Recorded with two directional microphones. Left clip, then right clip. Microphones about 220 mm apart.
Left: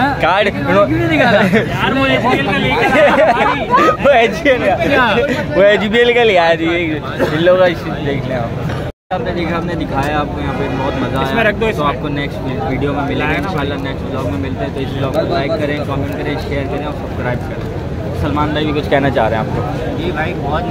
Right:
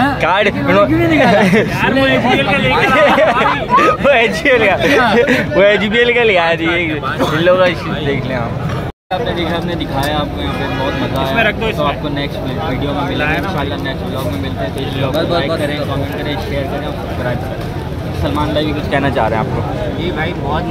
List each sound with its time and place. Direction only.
0.0 s speech: 10° right (ahead or behind)
1.4 s speech: 10° right (ahead or behind)
4.9 s speech: 15° right (ahead or behind)
5.5 s speech: centre (ahead or behind)
11.3 s speech: 25° left (ahead or behind)
19.0 s speech: 5° left (ahead or behind)